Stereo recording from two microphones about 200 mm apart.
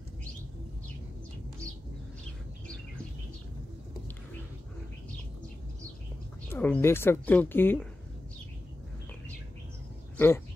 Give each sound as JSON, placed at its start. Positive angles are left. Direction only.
{"t": 6.5, "sound": "a woman's voice", "side_deg": 10}
{"t": 10.1, "sound": "speech", "side_deg": 10}